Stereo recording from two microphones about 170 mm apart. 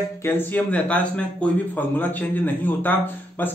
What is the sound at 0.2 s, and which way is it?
Speech, 10° left (ahead or behind).